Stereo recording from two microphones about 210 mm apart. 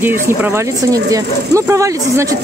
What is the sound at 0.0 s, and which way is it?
Speech, 10° right (ahead or behind).